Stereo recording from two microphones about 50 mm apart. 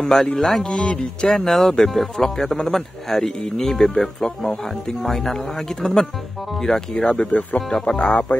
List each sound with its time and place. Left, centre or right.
0.0 s speech: centre